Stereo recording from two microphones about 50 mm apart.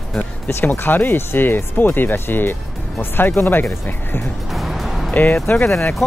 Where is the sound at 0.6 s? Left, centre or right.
Left.